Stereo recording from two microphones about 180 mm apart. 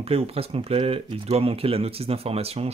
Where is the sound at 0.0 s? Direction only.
35° right (ahead or behind).